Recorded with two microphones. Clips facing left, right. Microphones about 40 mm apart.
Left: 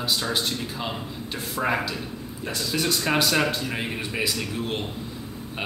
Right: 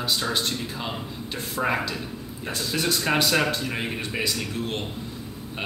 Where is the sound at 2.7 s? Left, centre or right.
Centre.